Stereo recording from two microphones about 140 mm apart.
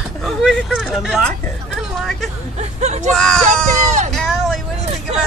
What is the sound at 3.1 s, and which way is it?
Speech, 5° left (ahead or behind).